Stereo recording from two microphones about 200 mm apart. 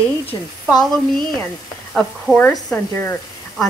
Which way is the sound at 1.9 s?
Centre (ahead or behind).